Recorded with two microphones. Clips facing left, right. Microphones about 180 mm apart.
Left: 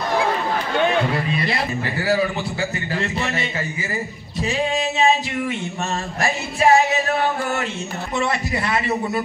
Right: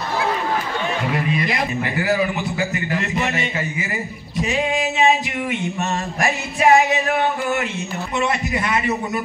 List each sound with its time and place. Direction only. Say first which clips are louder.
1.1 s a man's voice: right 1 dB; 35° left (ahead or behind)
4.4 s female singing: right 1 dB; 30° left (ahead or behind)